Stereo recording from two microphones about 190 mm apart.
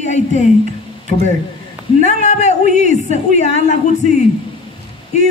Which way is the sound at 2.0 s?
40° left (ahead or behind).